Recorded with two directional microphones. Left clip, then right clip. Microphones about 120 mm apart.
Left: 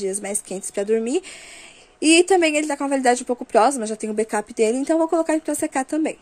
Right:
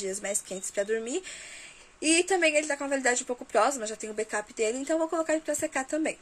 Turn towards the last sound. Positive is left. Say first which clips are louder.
# left 7 dB
turn(degrees=55)  # may be behind; listen again after turning